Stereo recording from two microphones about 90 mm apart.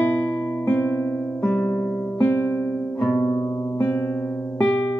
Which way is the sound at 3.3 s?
30° left (ahead or behind).